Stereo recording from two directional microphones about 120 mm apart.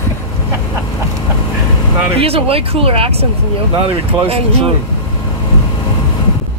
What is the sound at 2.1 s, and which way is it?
Speech, 55° right (ahead or behind).